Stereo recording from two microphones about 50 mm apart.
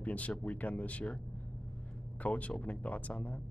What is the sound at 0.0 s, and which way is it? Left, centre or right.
Speech, left.